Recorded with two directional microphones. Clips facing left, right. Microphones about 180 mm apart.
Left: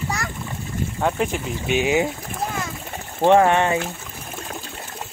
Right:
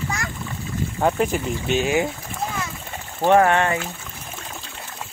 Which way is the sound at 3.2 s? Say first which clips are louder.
Left 1 dB; 20° left (ahead or behind).